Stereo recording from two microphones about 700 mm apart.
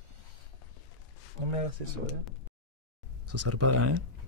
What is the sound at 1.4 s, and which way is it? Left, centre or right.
Speech, right.